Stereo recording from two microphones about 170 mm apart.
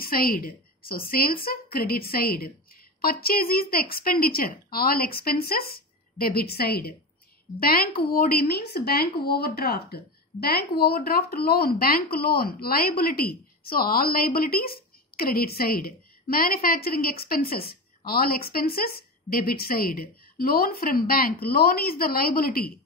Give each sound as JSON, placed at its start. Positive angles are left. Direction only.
{"t": 0.0, "sound": "speech", "side_deg": 60}